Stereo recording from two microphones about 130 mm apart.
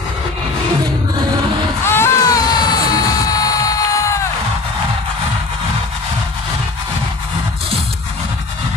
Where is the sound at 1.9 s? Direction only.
25° left (ahead or behind).